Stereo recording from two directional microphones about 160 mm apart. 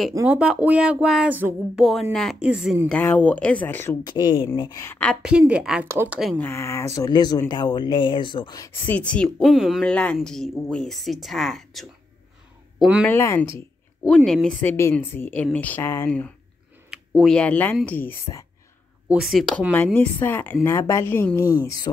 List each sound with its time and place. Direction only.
0.1 s speech: 10° right (ahead or behind)
2.9 s speech: 10° left (ahead or behind)
4.0 s speech: 30° left (ahead or behind)
5.1 s speech: 5° right (ahead or behind)
6.3 s speech: 15° left (ahead or behind); by 13.0 s 5° right (ahead or behind)
13.0 s speech: 15° left (ahead or behind)
14.0 s speech: centre (ahead or behind)
19.0 s speech: 5° right (ahead or behind)
19.7 s speech: 10° left (ahead or behind)